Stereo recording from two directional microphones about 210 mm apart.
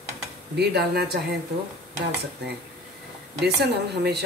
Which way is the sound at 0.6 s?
50° right (ahead or behind).